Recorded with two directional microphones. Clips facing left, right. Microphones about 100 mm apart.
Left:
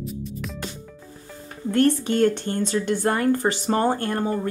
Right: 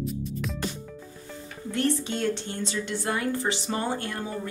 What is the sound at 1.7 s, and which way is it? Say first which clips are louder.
A woman's voice: left 7 dB; 55° left (ahead or behind).